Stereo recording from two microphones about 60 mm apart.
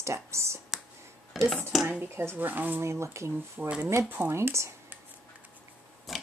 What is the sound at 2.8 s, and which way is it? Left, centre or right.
Speech, right.